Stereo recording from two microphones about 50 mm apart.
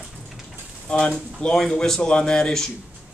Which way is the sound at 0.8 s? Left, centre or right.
Left.